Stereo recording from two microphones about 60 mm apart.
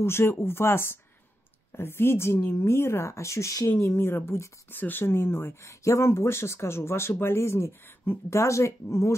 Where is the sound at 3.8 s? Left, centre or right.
Left.